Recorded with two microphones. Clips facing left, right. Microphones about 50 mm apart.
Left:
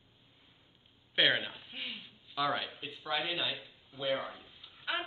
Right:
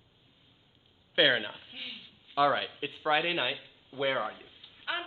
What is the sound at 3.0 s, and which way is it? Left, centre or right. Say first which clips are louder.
Speech: right 7 dB; right.